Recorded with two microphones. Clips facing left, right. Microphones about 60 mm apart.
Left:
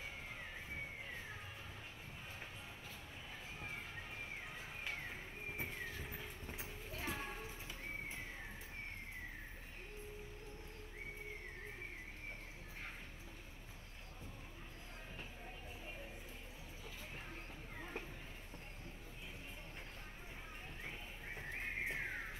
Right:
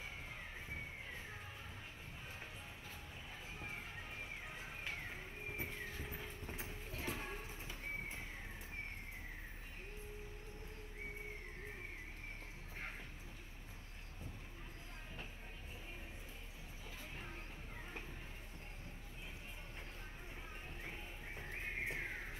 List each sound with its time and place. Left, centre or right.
3.5 s music: right
4.8 s music: left
5.6 s vehicle: left
6.1 s clip-clop: right
6.9 s clip-clop: left
21.5 s horse: left